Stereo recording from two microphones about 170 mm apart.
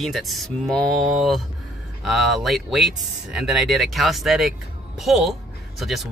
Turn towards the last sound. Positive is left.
turn(degrees=0)  # may be behind; listen again after turning